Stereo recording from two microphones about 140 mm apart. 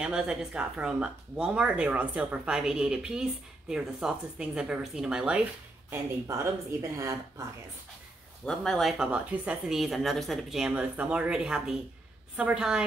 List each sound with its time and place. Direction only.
0.0 s a woman's voice: 5° right (ahead or behind)
5.9 s speech: 20° right (ahead or behind)
8.5 s a woman's voice: centre (ahead or behind)